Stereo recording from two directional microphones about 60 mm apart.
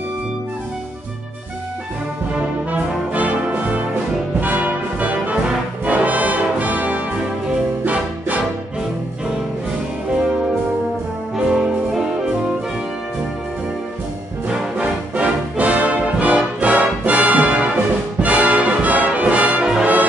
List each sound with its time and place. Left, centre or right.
3.1 s brass instrument: right
7.8 s music: right
11.3 s music: centre
14.5 s music: centre